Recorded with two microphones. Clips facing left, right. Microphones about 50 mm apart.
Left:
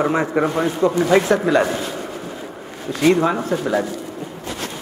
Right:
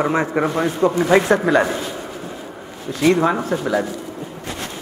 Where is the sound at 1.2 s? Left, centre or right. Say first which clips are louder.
Right 1 dB; right.